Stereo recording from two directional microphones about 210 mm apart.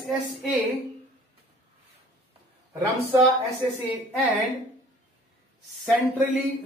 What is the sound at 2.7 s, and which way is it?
Speech, 20° right (ahead or behind).